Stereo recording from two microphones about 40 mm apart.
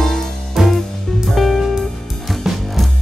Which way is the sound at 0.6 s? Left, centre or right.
Centre.